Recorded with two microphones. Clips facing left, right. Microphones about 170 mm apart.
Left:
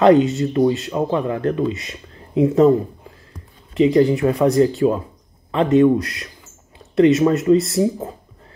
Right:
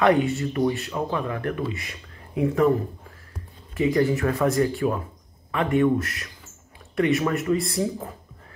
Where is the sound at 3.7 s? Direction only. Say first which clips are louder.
Left 7 dB; 20° left (ahead or behind).